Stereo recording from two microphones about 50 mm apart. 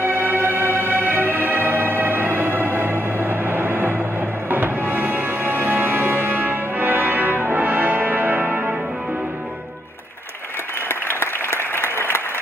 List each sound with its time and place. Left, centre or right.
0.0 s music: right
10.9 s applause: left